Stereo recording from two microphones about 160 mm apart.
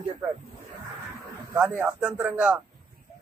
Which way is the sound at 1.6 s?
5° right (ahead or behind).